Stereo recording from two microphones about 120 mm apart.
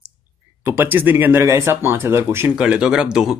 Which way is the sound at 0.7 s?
15° right (ahead or behind).